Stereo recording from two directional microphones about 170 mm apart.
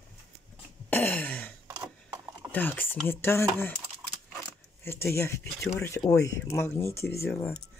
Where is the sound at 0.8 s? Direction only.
10° left (ahead or behind).